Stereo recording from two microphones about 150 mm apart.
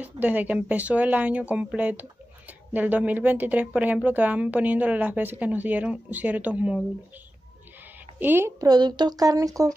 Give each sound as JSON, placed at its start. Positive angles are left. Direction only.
{"t": 0.0, "sound": "speech", "side_deg": -10}
{"t": 8.2, "sound": "a woman's voice", "side_deg": -15}